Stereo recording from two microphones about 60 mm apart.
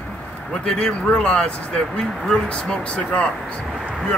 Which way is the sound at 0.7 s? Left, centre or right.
Centre.